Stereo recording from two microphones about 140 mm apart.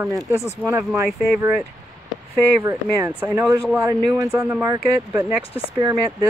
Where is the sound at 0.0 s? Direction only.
15° right (ahead or behind).